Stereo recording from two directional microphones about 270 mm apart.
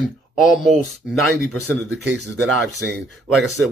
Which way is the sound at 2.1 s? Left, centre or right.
Right.